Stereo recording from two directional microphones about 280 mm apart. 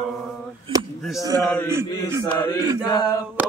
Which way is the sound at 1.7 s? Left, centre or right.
Centre.